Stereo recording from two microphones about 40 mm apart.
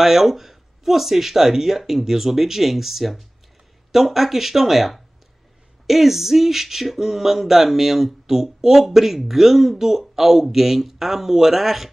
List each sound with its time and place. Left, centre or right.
0.0 s speech: centre